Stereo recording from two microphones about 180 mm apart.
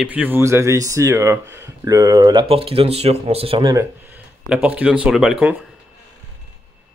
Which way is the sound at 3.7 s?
15° right (ahead or behind).